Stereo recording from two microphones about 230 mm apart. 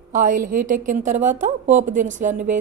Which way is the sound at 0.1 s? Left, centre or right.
Right.